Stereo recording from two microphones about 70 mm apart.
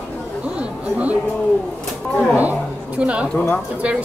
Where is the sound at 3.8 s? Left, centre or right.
Centre.